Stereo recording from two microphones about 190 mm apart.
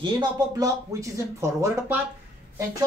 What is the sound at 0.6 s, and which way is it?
Speech, 15° right (ahead or behind).